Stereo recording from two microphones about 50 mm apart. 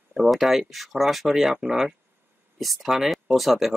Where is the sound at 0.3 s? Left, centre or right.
Centre.